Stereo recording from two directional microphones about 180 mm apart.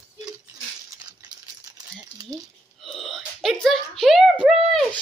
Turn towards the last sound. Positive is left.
turn(degrees=5)  # may be behind; listen again after turning